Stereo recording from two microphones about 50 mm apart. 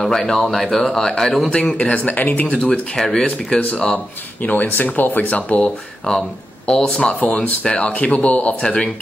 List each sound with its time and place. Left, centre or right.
0.0 s speech: centre
1.8 s speech: left
2.6 s speech: centre
4.4 s speech: left
5.6 s speech: centre